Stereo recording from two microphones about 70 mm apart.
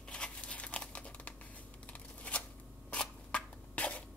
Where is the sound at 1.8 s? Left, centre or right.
Centre.